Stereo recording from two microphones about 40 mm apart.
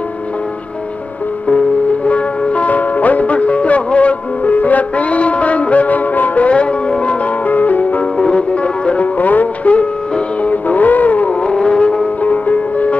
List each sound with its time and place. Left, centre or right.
2.0 s music: left
7.4 s music: left
8.2 s music: left
11.4 s vehicle: left
12.2 s music: left